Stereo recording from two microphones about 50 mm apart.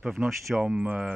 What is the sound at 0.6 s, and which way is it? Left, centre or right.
Speech, centre.